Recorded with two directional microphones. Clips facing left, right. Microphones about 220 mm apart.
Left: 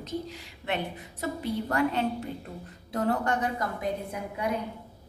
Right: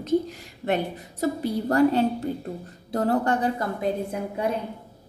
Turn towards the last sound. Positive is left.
turn(degrees=-30)  # may be behind; listen again after turning